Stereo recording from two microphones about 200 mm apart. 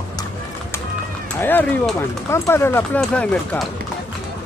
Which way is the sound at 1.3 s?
10° left (ahead or behind).